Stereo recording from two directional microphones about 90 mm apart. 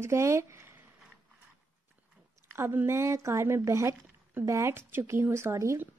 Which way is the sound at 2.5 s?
25° right (ahead or behind).